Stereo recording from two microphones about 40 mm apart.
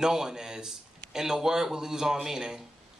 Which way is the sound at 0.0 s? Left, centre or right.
Centre.